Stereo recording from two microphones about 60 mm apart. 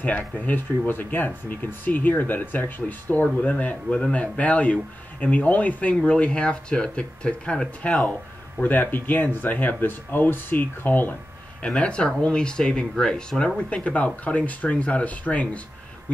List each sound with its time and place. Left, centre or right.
0.5 s speech: left
11.6 s speech: centre
13.8 s speech: left